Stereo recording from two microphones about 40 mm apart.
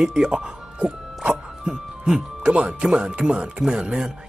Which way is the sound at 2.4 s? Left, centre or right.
Right.